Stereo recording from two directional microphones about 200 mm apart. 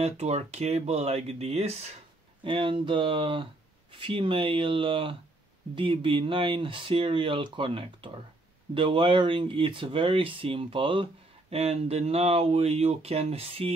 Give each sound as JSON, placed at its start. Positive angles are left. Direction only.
{"t": 0.0, "sound": "speech", "side_deg": -30}